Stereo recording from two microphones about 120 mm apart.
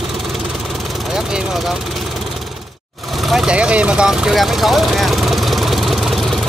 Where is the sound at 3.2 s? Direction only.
5° right (ahead or behind).